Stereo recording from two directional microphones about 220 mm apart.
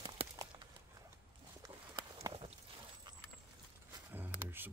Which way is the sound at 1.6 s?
20° right (ahead or behind).